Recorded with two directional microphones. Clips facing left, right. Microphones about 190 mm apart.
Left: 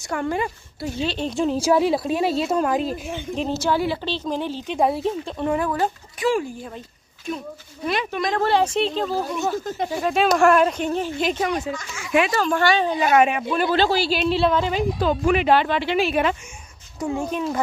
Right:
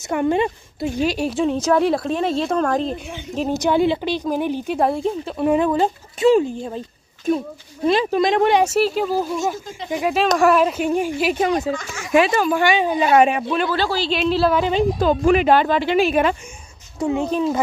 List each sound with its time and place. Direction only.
0.1 s speech: 20° right (ahead or behind); by 3.0 s 5° left (ahead or behind)
3.5 s speech: 20° right (ahead or behind)
4.7 s speech: centre (ahead or behind)
5.4 s speech: 20° right (ahead or behind)
7.8 s speech: 30° right (ahead or behind)
10.1 s speech: centre (ahead or behind)
11.7 s speech: 55° right (ahead or behind)
12.3 s speech: 10° right (ahead or behind)
13.1 s speech: 30° right (ahead or behind)
13.7 s speech: 20° left (ahead or behind)
14.0 s speech: centre (ahead or behind)
14.6 s speech: 25° right (ahead or behind)
15.0 s speech: 40° right (ahead or behind)
17.0 s speech: 25° right (ahead or behind)